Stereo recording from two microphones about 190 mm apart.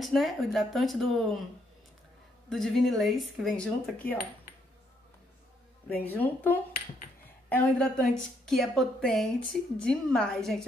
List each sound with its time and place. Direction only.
0.0 s speech: centre (ahead or behind)
2.5 s speech: centre (ahead or behind)
6.0 s a woman's voice: 10° left (ahead or behind)